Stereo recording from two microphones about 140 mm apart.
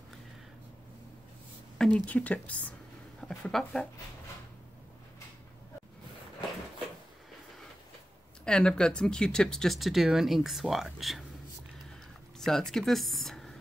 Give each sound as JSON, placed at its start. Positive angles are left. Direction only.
{"t": 1.8, "sound": "speech", "side_deg": 10}
{"t": 8.5, "sound": "speech", "side_deg": 5}
{"t": 12.4, "sound": "speech", "side_deg": 5}